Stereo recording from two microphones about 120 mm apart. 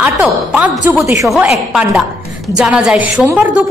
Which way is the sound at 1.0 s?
25° right (ahead or behind).